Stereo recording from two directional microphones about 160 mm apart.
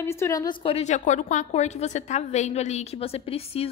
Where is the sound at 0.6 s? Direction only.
45° left (ahead or behind).